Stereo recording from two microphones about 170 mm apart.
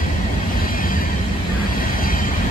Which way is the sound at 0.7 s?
55° left (ahead or behind).